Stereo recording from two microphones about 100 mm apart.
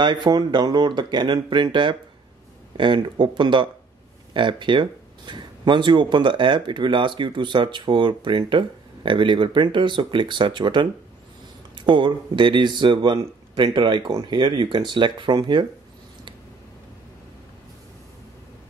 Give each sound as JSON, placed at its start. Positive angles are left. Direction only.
{"t": 0.0, "sound": "speech", "side_deg": -50}